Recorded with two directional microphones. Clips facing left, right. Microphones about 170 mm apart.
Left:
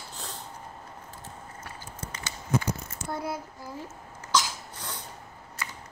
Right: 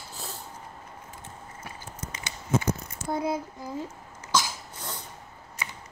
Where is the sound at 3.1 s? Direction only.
20° right (ahead or behind).